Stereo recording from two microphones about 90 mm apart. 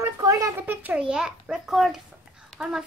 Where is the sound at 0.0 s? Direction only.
40° right (ahead or behind).